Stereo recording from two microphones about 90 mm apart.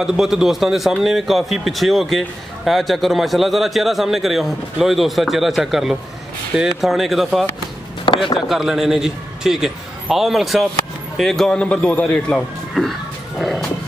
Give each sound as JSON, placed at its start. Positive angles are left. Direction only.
{"t": 0.0, "sound": "a man's voice", "side_deg": -5}
{"t": 8.1, "sound": "chop", "side_deg": 85}
{"t": 8.5, "sound": "a man's voice", "side_deg": -5}
{"t": 13.4, "sound": "music", "side_deg": 0}